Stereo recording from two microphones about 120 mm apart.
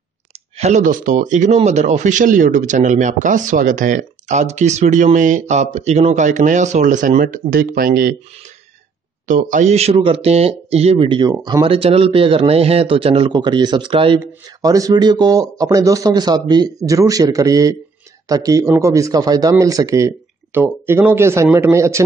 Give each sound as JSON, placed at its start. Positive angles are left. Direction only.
{"t": 0.6, "sound": "speech", "side_deg": -80}
{"t": 9.3, "sound": "a man's voice", "side_deg": -85}
{"t": 14.2, "sound": "speech", "side_deg": -30}